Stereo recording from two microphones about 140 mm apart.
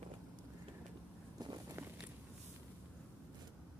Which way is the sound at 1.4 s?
30° right (ahead or behind).